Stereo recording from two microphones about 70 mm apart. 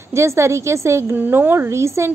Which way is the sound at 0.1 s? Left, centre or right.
Right.